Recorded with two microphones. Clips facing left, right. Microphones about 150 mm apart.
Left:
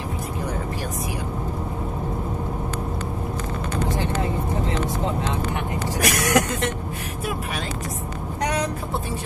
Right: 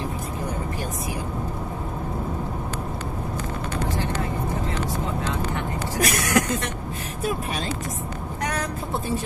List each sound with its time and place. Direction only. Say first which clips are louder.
6.0 s vehicle: left 2 dB; 25° left (ahead or behind)